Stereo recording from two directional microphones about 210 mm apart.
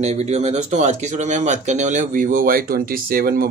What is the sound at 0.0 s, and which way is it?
Speech, 30° right (ahead or behind).